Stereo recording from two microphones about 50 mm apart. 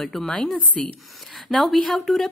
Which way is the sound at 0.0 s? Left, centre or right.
Centre.